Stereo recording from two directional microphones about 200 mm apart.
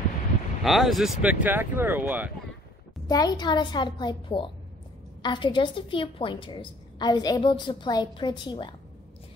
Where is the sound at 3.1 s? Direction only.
20° left (ahead or behind).